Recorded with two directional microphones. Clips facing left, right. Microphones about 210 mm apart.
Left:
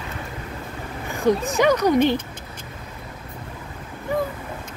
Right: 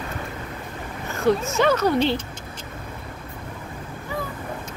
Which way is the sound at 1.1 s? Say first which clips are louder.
Left 1 dB; 15° left (ahead or behind).